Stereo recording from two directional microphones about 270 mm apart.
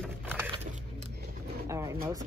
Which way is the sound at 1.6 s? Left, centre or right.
Centre.